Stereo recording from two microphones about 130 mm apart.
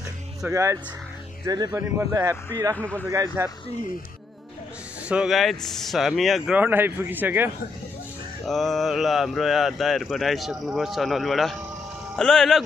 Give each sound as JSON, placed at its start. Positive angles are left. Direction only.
{"t": 0.5, "sound": "a man's voice", "side_deg": -20}
{"t": 5.0, "sound": "speech", "side_deg": -5}
{"t": 6.5, "sound": "a man's voice", "side_deg": -15}
{"t": 8.5, "sound": "speech", "side_deg": 0}